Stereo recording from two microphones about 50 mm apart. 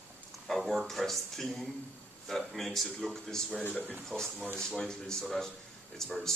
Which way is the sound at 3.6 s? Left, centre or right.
Left.